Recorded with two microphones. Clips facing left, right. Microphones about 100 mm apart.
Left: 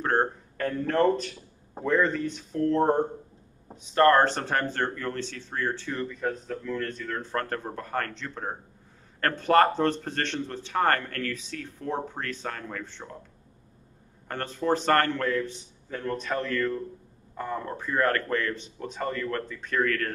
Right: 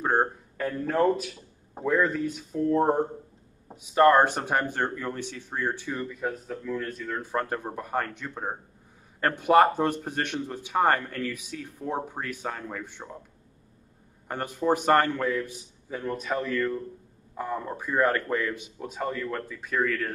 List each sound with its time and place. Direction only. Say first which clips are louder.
0.0 s a sound: right 1 dB; 10° right (ahead or behind)
1.8 s speech: even; 5° right (ahead or behind)
14.2 s speech: right 2 dB; 15° right (ahead or behind)